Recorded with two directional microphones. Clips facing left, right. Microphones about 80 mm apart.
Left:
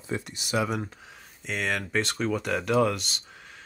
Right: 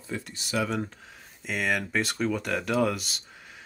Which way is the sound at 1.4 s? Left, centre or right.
Centre.